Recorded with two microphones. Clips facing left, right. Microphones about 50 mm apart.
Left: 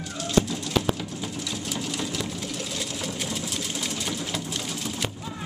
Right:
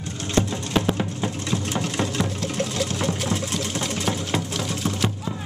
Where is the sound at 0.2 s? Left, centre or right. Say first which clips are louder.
Even; right.